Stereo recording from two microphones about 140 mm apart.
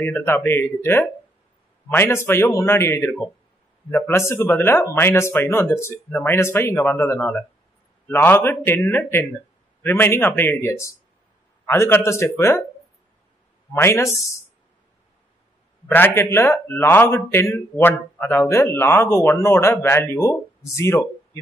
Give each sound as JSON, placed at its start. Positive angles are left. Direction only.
{"t": 0.0, "sound": "a man's voice", "side_deg": 15}
{"t": 13.7, "sound": "speech", "side_deg": 20}
{"t": 15.9, "sound": "a man's voice", "side_deg": 15}